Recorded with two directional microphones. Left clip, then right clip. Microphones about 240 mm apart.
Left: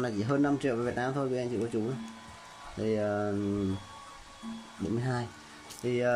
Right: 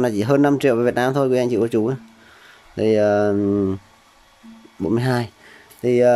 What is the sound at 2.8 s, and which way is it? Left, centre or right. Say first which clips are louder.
Speech: right 14 dB; right.